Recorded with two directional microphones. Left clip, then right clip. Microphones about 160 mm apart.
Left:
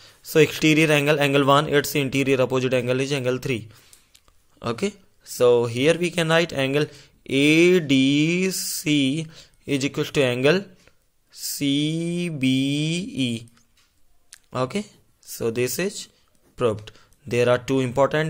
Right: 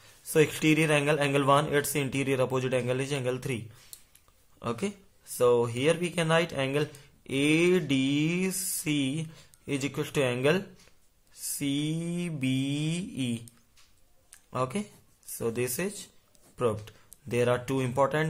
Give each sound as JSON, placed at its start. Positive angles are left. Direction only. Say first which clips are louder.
{"t": 0.0, "sound": "speech", "louder": "left 7 dB", "side_deg": 25}
{"t": 14.3, "sound": "a sound", "louder": "left 5 dB", "side_deg": 30}
{"t": 15.3, "sound": "speech", "louder": "left 7 dB", "side_deg": 25}